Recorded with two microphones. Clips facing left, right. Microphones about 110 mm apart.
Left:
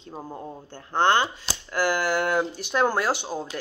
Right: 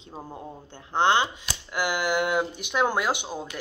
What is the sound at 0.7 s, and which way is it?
Speech, 20° right (ahead or behind).